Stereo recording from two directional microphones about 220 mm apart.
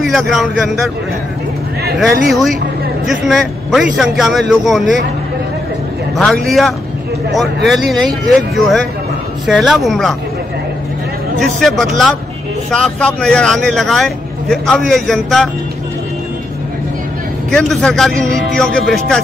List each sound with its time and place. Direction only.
0.0 s speech: centre (ahead or behind)
2.0 s speech: centre (ahead or behind)
6.1 s speech: 5° left (ahead or behind)
11.3 s speech: centre (ahead or behind)
17.5 s speech: centre (ahead or behind)